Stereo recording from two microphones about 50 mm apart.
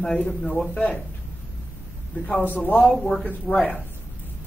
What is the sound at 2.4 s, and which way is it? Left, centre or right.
Speech, left.